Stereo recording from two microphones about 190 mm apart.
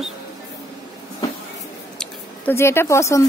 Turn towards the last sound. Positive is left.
turn(degrees=15)  # may be behind; listen again after turning